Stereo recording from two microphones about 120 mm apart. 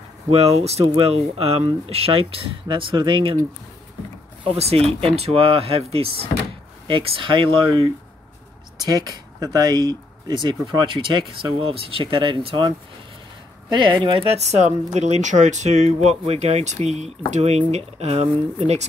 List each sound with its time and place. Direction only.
0.3 s speech: 60° right (ahead or behind)
4.6 s speech: 55° right (ahead or behind); by 14.2 s 40° right (ahead or behind)
14.3 s speech: 65° right (ahead or behind)
15.0 s speech: 75° right (ahead or behind)